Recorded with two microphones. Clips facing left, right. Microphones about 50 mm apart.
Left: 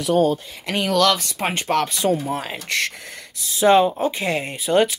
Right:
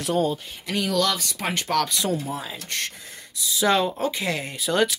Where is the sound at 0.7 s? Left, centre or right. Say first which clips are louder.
Left 5 dB; left.